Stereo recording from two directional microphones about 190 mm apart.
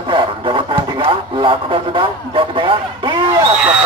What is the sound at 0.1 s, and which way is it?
Radio, 25° right (ahead or behind).